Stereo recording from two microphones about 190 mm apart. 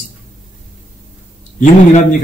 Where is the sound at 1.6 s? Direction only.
40° left (ahead or behind).